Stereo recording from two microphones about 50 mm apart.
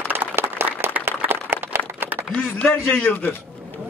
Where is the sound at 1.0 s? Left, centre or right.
Right.